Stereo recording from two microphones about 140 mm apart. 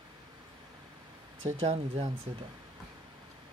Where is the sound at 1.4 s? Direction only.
50° right (ahead or behind).